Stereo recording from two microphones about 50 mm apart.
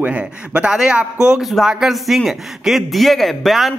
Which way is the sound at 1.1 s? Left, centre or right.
Centre.